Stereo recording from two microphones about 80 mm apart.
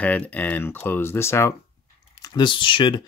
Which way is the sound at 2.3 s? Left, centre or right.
Left.